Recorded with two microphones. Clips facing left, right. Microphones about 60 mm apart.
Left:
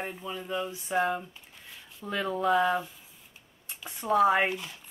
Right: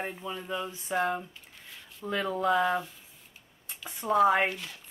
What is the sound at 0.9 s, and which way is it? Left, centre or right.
Speech, centre.